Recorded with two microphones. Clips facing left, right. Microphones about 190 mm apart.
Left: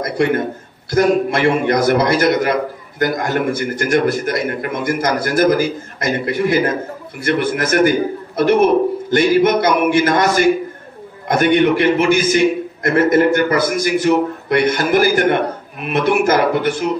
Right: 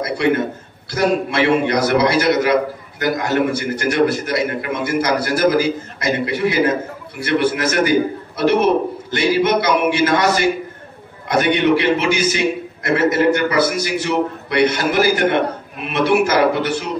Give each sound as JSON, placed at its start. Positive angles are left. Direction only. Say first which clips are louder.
{"t": 0.2, "sound": "a man's voice", "louder": "left 1 dB", "side_deg": 50}